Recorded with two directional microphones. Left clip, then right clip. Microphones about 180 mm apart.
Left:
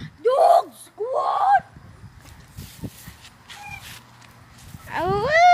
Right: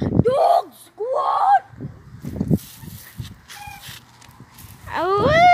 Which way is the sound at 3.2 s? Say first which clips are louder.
Right 2 dB; 35° right (ahead or behind).